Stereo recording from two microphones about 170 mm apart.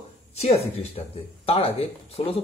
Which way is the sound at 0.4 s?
40° left (ahead or behind).